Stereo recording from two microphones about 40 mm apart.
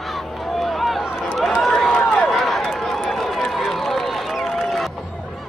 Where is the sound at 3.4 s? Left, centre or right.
Centre.